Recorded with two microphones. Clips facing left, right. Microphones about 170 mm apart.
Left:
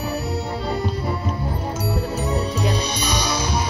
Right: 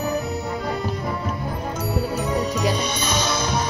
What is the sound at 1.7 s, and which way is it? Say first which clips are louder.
Music: right 2 dB; 10° left (ahead or behind).